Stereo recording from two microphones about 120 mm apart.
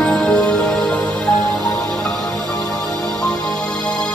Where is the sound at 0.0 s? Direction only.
5° left (ahead or behind).